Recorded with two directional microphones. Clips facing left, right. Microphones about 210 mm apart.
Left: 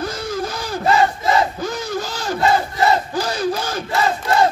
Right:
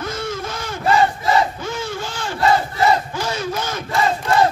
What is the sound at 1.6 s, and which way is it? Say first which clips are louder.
Battle cry: left 2 dB; 35° left (ahead or behind).